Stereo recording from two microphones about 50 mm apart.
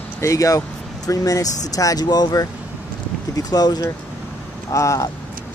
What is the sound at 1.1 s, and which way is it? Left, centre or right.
Speech, left.